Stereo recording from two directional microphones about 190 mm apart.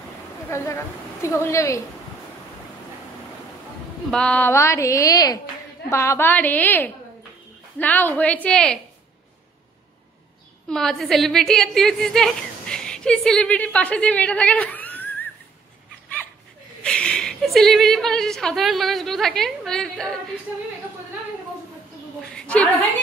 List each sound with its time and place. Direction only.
0.5 s a woman's voice: 15° left (ahead or behind)
4.1 s a woman's voice: 5° left (ahead or behind)
10.7 s a woman's voice: centre (ahead or behind)
16.8 s a woman's voice: 5° left (ahead or behind)
22.2 s a woman's voice: 5° left (ahead or behind)